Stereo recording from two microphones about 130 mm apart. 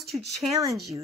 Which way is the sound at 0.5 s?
25° right (ahead or behind).